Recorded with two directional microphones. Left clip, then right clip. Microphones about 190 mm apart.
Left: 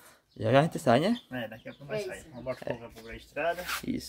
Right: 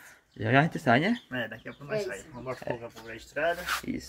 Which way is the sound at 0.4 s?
15° left (ahead or behind).